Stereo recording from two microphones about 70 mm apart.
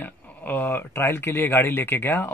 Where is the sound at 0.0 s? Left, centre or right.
Left.